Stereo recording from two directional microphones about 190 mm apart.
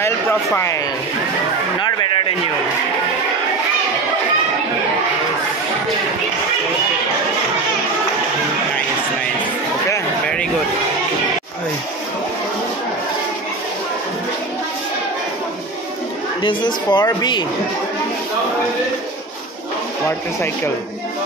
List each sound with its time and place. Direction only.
0.0 s speech: 15° left (ahead or behind)
9.8 s a sound: 10° left (ahead or behind)
16.4 s a woman's voice: 25° left (ahead or behind)